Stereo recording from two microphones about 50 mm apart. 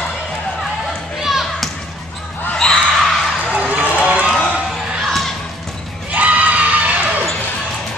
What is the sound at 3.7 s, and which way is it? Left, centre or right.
Run, right.